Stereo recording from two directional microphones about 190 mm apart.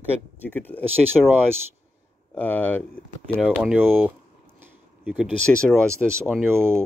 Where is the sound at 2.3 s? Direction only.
10° left (ahead or behind).